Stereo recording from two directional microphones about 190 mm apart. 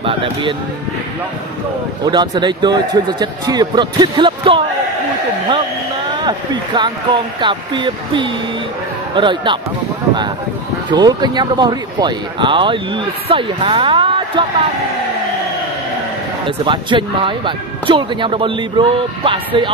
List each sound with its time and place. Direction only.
0.0 s speech: 25° right (ahead or behind)
2.0 s speech: 25° right (ahead or behind)
6.2 s speech: 25° right (ahead or behind)
10.9 s speech: 20° right (ahead or behind)
16.4 s speech: 25° right (ahead or behind)